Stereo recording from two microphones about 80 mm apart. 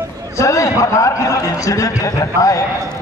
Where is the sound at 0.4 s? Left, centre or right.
Left.